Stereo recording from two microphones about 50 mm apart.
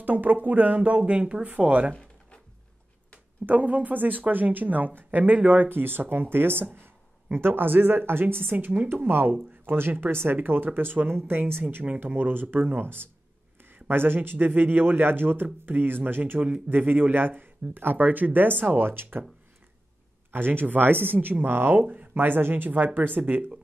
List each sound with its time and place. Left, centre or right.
0.0 s speech: right
3.4 s a woman's voice: right
16.3 s speech: right
16.6 s speech: right
20.2 s speech: right
21.8 s speech: right
22.1 s speech: right